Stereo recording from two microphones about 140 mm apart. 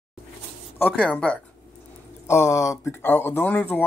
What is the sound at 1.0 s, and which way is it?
Speech, 5° left (ahead or behind).